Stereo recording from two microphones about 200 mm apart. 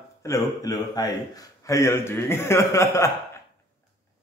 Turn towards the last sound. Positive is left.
turn(degrees=15)  # may be behind; listen again after turning